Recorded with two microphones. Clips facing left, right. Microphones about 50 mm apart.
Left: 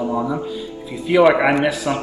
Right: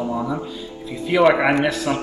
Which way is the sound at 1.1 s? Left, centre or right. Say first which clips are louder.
Left 2 dB; centre.